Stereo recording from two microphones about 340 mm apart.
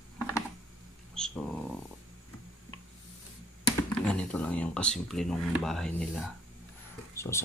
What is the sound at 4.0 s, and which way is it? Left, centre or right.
Speech, centre.